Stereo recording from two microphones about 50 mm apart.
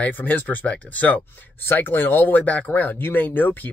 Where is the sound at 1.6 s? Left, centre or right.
Left.